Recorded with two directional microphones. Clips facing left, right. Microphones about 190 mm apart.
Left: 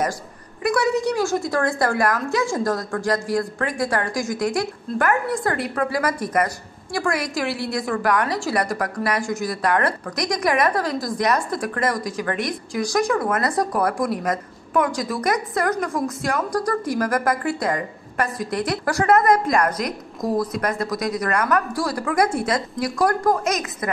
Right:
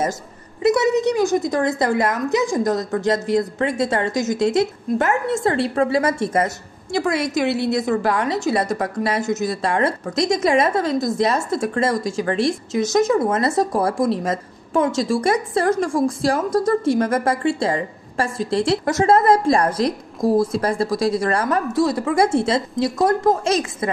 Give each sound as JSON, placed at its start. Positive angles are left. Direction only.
{"t": 0.6, "sound": "a woman's voice", "side_deg": -20}